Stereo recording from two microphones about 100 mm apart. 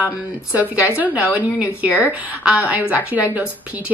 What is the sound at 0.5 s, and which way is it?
Speech, 10° right (ahead or behind).